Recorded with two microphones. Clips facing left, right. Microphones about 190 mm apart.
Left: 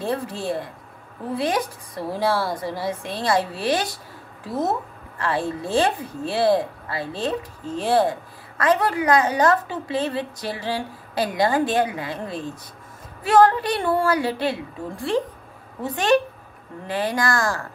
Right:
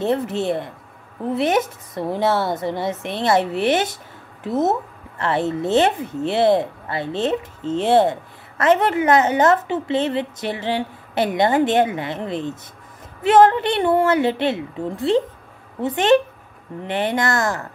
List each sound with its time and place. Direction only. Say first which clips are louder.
0.0 s speech: right 5 dB; 20° right (ahead or behind)